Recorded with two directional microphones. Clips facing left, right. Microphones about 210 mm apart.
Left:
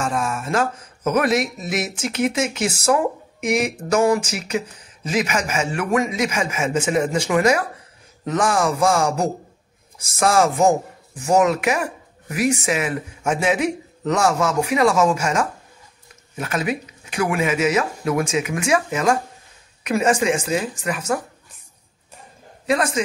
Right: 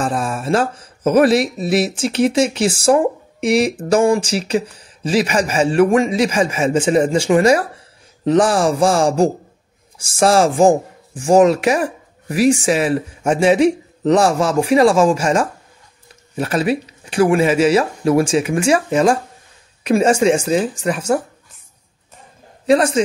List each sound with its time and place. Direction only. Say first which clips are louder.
0.0 s speech: right 3 dB; 35° right (ahead or behind)
22.7 s speech: right 7 dB; 30° right (ahead or behind)